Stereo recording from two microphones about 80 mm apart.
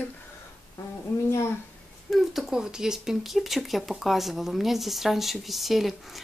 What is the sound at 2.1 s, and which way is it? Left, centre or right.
Speech, centre.